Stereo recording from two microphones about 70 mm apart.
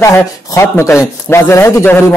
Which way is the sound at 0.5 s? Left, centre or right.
Left.